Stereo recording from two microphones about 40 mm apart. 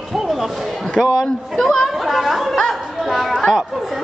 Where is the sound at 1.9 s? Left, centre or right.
Centre.